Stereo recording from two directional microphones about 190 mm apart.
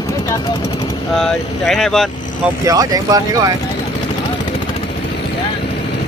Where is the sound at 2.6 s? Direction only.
20° right (ahead or behind).